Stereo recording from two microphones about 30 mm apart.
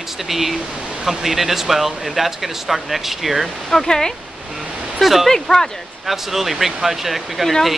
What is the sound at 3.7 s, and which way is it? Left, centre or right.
Speech, centre.